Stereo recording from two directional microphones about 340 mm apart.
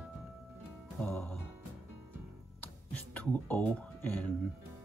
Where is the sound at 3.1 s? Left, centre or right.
Centre.